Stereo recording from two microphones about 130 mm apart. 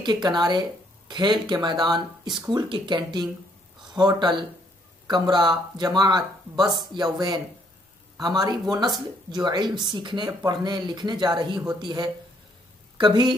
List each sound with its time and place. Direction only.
0.0 s a woman's voice: 35° right (ahead or behind)